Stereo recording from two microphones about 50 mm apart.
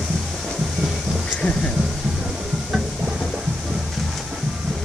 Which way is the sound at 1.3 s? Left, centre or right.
Left.